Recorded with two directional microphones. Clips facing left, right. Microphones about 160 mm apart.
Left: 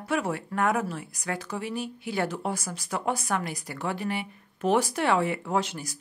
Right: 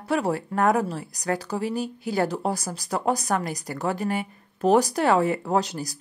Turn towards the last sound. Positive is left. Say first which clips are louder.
# right 4 dB
turn(degrees=-35)  # may be behind; listen again after turning